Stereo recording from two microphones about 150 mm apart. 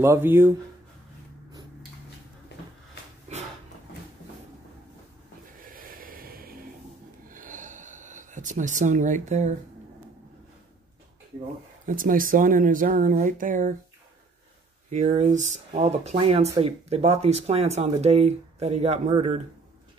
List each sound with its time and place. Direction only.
0.0 s speech: 15° right (ahead or behind)
5.6 s snort: 70° right (ahead or behind)
7.2 s a sound: 60° right (ahead or behind)
11.8 s speech: 65° right (ahead or behind)
14.9 s speech: 50° right (ahead or behind)